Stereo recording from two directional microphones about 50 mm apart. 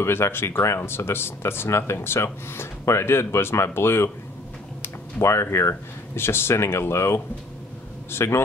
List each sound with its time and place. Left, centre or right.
0.0 s speech: left
5.2 s speech: left